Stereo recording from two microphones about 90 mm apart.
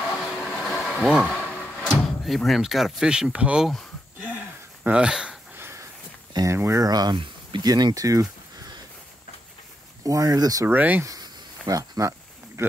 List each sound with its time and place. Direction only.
0.0 s train: centre (ahead or behind)
0.9 s speech: 10° right (ahead or behind)
1.3 s a sound: 15° left (ahead or behind)
2.0 s speech: centre (ahead or behind)
4.8 s speech: 10° right (ahead or behind)
5.6 s a sound: 30° right (ahead or behind)
6.5 s speech: 30° right (ahead or behind)
6.8 s speech: 45° right (ahead or behind)
10.0 s speech: 40° right (ahead or behind)
10.7 s speech: 20° right (ahead or behind)
11.6 s a sound: 40° right (ahead or behind)